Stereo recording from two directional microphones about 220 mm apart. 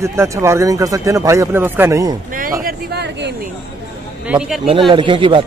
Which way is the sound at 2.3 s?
40° right (ahead or behind).